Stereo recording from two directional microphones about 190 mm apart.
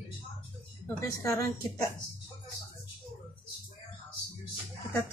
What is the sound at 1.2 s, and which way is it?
Speech, 15° left (ahead or behind).